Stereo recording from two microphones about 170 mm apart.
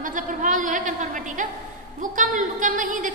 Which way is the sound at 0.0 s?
50° right (ahead or behind).